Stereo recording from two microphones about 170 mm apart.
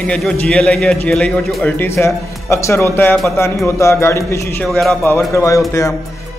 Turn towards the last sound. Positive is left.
turn(degrees=15)  # may be behind; listen again after turning